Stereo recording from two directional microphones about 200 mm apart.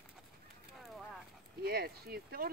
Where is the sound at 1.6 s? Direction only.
50° right (ahead or behind).